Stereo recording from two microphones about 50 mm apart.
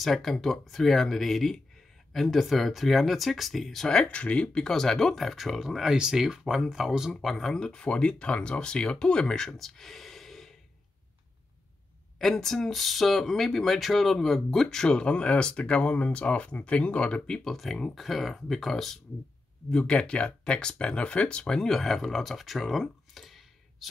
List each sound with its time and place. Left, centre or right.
0.0 s speech: centre
3.9 s speech: left
4.6 s speech: centre
7.5 s speech: centre
12.2 s speech: centre
19.7 s speech: centre